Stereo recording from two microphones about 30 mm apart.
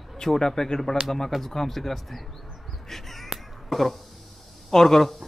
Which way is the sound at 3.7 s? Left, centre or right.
Centre.